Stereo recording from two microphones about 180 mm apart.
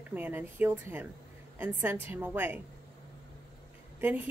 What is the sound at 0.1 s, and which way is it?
A woman's voice, 10° right (ahead or behind).